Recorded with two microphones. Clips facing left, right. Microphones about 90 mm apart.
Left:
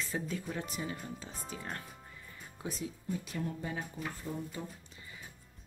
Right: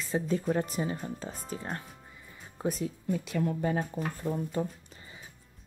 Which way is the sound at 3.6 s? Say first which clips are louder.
Right 9 dB; 50° right (ahead or behind).